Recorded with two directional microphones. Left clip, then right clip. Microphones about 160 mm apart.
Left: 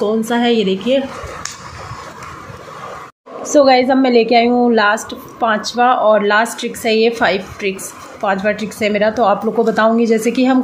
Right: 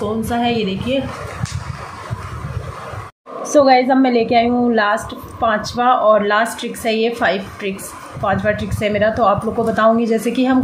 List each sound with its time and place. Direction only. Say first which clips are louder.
0.2 s a woman's voice: left 3 dB; 55° left (ahead or behind)
3.4 s a woman's voice: left 1 dB; 20° left (ahead or behind)